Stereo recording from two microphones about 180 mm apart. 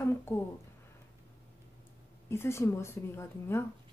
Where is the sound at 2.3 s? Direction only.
15° left (ahead or behind).